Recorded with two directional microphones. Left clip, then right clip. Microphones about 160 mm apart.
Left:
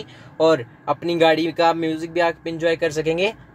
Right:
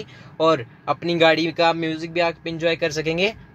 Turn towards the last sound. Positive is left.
turn(degrees=0)  # may be behind; listen again after turning